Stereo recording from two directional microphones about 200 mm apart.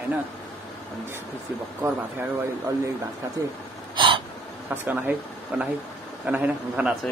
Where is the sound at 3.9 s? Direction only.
25° right (ahead or behind).